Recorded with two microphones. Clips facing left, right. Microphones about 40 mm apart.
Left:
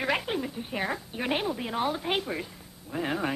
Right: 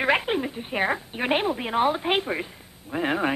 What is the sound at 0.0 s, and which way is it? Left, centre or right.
A woman's voice, right.